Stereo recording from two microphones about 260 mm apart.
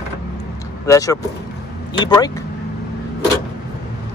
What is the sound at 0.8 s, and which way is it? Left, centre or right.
Speech, centre.